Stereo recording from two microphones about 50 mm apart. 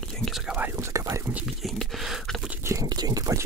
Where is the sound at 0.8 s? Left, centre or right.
Right.